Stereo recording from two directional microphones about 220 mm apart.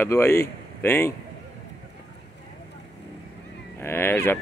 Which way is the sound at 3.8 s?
10° left (ahead or behind).